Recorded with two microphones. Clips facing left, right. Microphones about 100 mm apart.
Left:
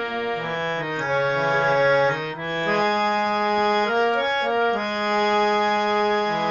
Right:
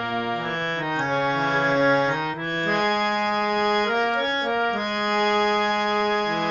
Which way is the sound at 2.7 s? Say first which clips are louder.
Left 2 dB; 35° left (ahead or behind).